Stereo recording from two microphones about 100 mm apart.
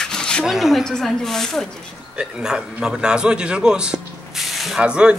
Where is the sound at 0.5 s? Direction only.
5° right (ahead or behind).